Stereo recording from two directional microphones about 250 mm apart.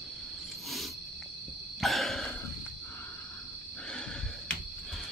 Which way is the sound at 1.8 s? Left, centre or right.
Centre.